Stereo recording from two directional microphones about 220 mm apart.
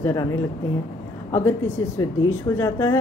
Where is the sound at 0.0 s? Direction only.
15° left (ahead or behind).